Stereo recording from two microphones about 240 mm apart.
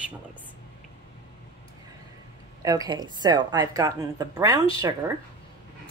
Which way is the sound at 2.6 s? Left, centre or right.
Centre.